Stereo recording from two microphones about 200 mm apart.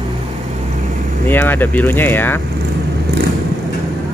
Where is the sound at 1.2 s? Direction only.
10° left (ahead or behind).